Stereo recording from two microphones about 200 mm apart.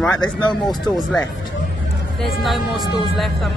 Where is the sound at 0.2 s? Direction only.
25° left (ahead or behind).